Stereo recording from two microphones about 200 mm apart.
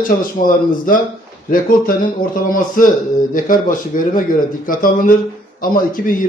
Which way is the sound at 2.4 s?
45° left (ahead or behind).